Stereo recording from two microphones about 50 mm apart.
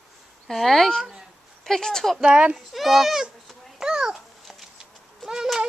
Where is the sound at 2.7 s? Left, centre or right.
Centre.